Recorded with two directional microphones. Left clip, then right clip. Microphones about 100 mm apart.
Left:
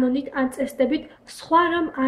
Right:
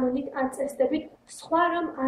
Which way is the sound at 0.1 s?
15° left (ahead or behind).